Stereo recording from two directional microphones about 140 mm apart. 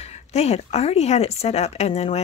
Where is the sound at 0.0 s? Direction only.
50° left (ahead or behind).